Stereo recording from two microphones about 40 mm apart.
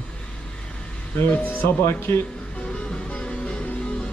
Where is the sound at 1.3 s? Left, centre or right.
Left.